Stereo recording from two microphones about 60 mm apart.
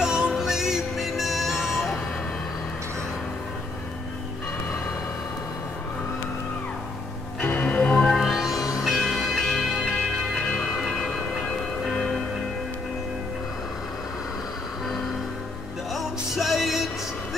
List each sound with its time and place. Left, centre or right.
0.0 s music: centre
7.6 s music: centre
8.1 s music: centre
10.8 s music: centre
15.9 s music: centre